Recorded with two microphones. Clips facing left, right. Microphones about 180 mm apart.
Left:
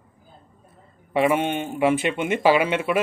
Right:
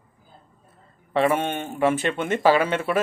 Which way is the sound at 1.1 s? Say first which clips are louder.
Left 1 dB; 10° left (ahead or behind).